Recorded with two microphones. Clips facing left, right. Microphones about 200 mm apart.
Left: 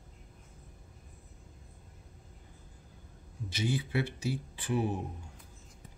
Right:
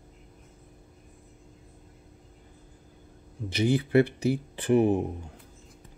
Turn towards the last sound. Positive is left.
turn(degrees=-60)  # may be behind; listen again after turning